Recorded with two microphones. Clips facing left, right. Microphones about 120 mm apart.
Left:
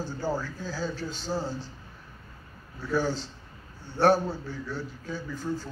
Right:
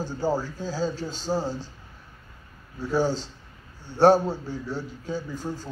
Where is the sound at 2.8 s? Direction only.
15° right (ahead or behind).